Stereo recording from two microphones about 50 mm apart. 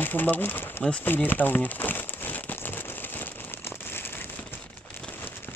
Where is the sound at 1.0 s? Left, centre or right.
Left.